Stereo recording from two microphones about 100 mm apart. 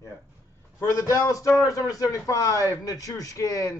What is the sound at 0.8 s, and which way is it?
A man's voice, 30° left (ahead or behind).